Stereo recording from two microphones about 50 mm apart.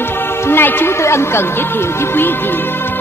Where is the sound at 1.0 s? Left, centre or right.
Left.